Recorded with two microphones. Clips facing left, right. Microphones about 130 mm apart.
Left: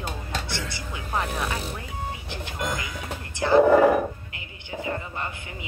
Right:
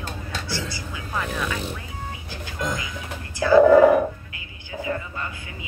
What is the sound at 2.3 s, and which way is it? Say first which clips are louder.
Speech: right 3 dB; 20° left (ahead or behind).